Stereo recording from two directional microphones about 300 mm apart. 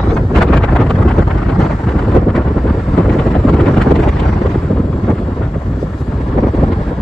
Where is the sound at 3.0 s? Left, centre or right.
Centre.